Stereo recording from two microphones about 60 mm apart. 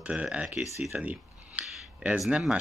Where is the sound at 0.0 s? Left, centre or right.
Centre.